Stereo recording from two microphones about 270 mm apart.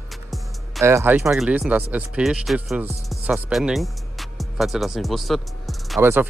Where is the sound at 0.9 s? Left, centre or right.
Centre.